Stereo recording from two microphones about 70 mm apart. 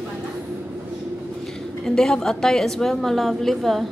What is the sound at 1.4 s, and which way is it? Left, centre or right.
A woman's voice, centre.